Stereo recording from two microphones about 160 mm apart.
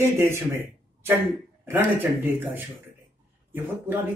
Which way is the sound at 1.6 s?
15° right (ahead or behind).